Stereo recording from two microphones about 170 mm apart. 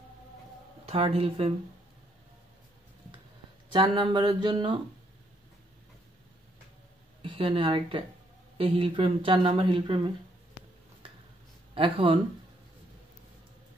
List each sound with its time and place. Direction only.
0.8 s speech: 35° right (ahead or behind)
3.7 s a sound: 30° right (ahead or behind)
7.2 s speech: 30° right (ahead or behind)
11.7 s speech: 30° right (ahead or behind)